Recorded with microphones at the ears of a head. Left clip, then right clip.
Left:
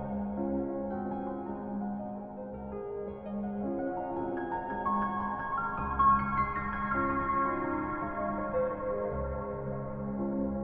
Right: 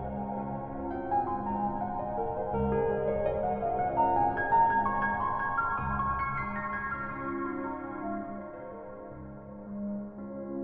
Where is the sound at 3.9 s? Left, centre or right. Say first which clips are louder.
Right 9 dB; right.